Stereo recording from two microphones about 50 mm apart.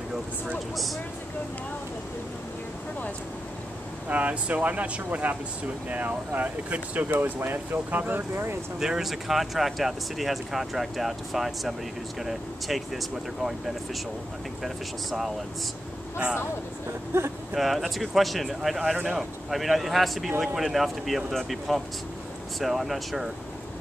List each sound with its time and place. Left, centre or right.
4.1 s speech: right
8.7 s speech: centre
14.6 s speech: centre
17.1 s speech: right
17.6 s speech: centre